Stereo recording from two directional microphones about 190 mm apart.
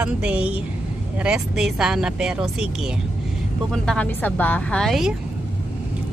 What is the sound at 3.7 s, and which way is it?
Speech, 5° left (ahead or behind).